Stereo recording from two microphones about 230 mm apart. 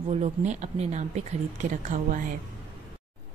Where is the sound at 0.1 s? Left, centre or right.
Right.